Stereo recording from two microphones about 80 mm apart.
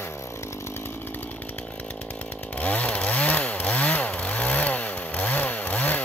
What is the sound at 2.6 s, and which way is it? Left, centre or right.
Chainsaw, centre.